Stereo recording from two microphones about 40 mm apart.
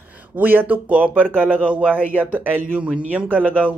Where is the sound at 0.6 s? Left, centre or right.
Right.